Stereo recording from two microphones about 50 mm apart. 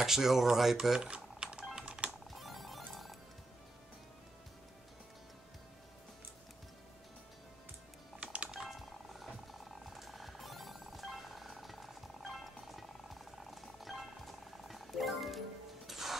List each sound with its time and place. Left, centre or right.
0.0 s speech: centre
1.0 s a sound: right
1.8 s typing: right
2.3 s music: centre
8.2 s music: right
8.5 s a sound: centre
12.3 s music: centre